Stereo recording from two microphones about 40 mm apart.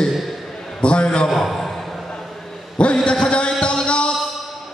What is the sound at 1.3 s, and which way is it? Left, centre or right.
Speech, centre.